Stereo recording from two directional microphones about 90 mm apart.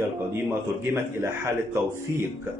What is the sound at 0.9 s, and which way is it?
Speech, 30° right (ahead or behind).